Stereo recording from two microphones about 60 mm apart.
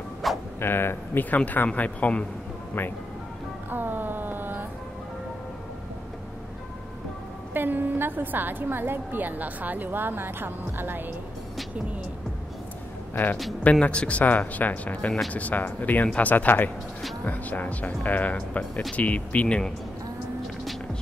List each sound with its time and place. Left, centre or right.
0.2 s a sound: centre
0.6 s speech: left
1.3 s speech: left
3.7 s a sound: right
7.5 s a woman's voice: right
13.1 s a man's voice: left
13.7 s speech: left
18.6 s speech: centre
18.9 s speech: left